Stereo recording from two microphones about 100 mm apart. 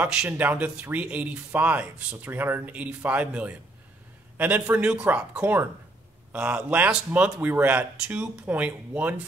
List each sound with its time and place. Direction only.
0.0 s speech: 10° right (ahead or behind)